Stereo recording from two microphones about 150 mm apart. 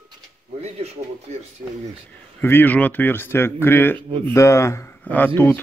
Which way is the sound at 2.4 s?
15° left (ahead or behind).